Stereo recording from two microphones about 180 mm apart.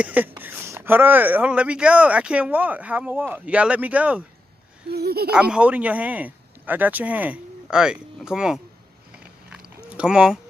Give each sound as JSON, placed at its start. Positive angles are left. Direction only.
{"t": 0.0, "sound": "speech", "side_deg": -10}
{"t": 4.8, "sound": "speech", "side_deg": -60}
{"t": 5.3, "sound": "speech", "side_deg": -5}
{"t": 9.9, "sound": "speech", "side_deg": -5}